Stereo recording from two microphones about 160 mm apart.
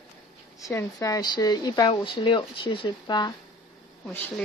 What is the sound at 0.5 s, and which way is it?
Speech, 20° left (ahead or behind).